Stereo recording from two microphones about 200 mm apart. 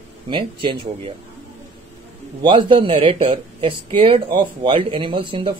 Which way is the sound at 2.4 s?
25° right (ahead or behind).